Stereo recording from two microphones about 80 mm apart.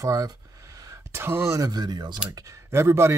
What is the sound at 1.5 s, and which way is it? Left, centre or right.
Speech, right.